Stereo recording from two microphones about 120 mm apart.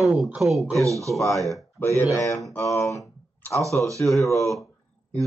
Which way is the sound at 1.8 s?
20° left (ahead or behind).